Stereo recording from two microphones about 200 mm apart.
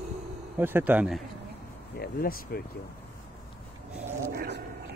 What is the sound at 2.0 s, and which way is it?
Speech, 50° left (ahead or behind).